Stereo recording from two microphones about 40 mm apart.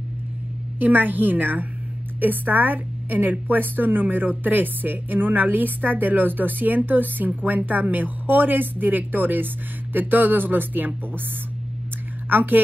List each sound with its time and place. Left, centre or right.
0.7 s a woman's voice: right
12.3 s a woman's voice: right